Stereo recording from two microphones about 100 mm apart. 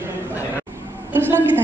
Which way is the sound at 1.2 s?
20° right (ahead or behind).